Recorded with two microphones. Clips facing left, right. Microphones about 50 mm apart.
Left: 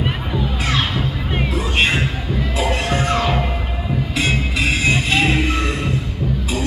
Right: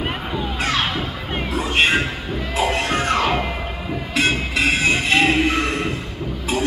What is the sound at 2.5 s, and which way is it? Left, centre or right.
Crowd, right.